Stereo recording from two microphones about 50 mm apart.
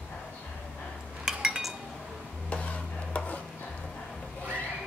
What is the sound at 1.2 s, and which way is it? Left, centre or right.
Cutlery, centre.